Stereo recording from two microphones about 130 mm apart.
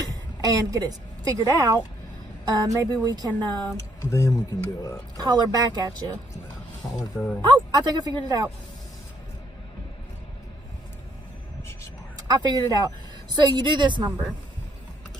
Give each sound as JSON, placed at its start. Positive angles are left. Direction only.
{"t": 0.0, "sound": "a woman's voice", "side_deg": -30}
{"t": 4.0, "sound": "speech", "side_deg": 25}
{"t": 5.2, "sound": "a woman's voice", "side_deg": -30}
{"t": 7.2, "sound": "speech", "side_deg": 10}
{"t": 7.7, "sound": "a woman's voice", "side_deg": -30}
{"t": 12.3, "sound": "a woman's voice", "side_deg": -30}